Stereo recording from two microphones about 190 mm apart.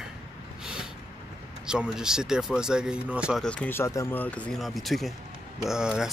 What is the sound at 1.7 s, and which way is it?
Speech, 5° right (ahead or behind).